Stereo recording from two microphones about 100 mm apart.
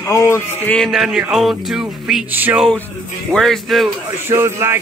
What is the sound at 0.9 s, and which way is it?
Speech, 5° right (ahead or behind).